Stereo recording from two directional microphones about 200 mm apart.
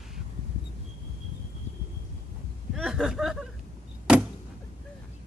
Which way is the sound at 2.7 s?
5° right (ahead or behind).